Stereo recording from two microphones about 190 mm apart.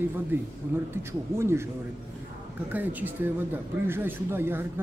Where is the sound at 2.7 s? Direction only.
10° right (ahead or behind).